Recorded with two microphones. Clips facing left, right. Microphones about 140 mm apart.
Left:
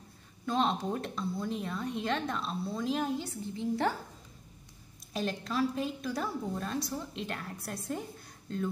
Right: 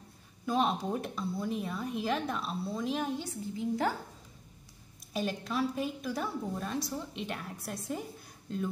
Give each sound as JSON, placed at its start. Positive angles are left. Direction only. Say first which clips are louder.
{"t": 0.5, "sound": "a woman's voice", "louder": "even", "side_deg": -5}
{"t": 5.1, "sound": "a woman's voice", "louder": "even", "side_deg": -5}